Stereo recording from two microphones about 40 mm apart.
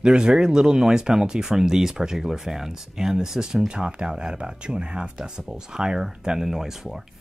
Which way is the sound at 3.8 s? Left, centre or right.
Right.